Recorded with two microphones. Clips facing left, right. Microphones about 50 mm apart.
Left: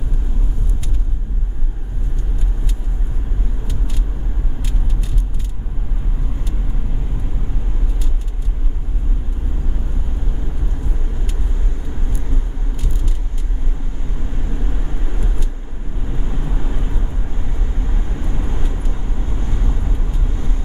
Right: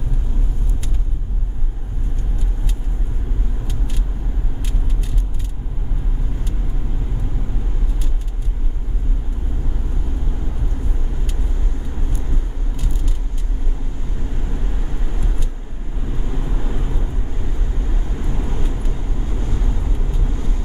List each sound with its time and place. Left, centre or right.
18.4 s vehicle: left